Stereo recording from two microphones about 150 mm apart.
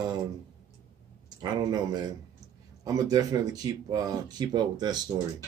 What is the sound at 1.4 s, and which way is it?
Speech, 30° right (ahead or behind).